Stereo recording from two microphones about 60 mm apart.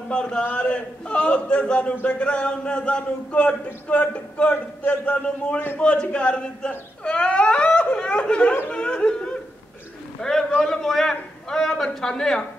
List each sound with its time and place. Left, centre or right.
0.1 s a man's voice: centre